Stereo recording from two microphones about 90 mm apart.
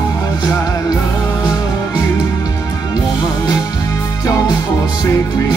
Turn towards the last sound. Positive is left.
turn(degrees=40)  # may be behind; listen again after turning